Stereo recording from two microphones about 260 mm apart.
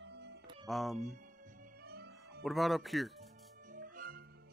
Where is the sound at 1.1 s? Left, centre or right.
Right.